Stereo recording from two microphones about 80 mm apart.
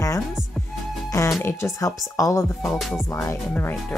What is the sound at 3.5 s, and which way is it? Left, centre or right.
Speech, left.